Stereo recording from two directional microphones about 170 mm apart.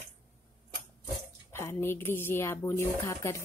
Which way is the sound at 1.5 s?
15° left (ahead or behind).